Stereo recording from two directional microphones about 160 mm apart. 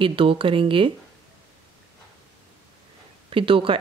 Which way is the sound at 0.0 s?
35° right (ahead or behind).